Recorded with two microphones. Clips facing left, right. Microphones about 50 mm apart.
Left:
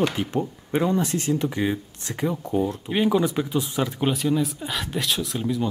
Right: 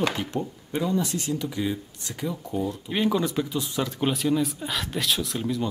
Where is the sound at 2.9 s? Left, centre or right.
Centre.